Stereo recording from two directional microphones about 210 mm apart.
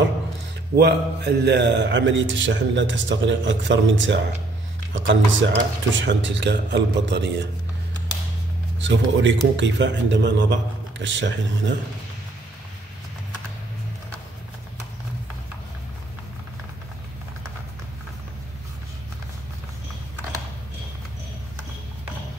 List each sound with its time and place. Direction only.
0.7 s a man's voice: 50° right (ahead or behind)
8.7 s a man's voice: 60° right (ahead or behind)